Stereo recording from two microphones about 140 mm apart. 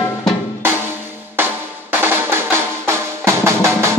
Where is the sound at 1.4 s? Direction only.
15° right (ahead or behind).